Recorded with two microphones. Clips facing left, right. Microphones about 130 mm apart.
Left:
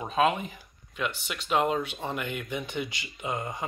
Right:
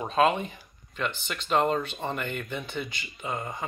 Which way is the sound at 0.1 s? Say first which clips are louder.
Right 2 dB; 5° left (ahead or behind).